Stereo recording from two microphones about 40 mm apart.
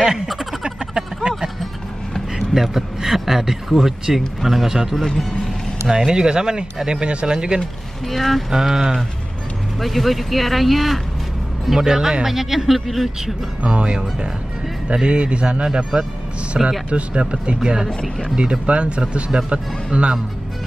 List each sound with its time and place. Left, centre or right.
0.3 s a sound: centre
0.7 s a sound: centre
2.3 s speech: centre
5.0 s speech: centre
5.9 s speech: centre
8.1 s speech: centre
8.5 s speech: centre
9.8 s speech: centre
11.7 s speech: centre
13.6 s speech: right; by 16.7 s centre
16.9 s speech: right
18.7 s speech: right